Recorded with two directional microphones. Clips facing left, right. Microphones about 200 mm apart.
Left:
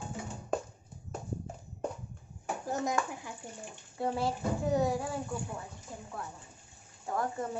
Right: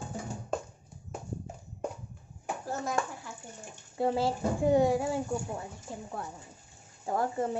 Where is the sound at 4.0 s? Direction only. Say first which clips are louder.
Right 4 dB; 30° right (ahead or behind).